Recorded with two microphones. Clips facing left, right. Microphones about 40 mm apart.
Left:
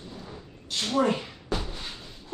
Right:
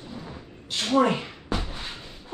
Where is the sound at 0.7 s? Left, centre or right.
Right.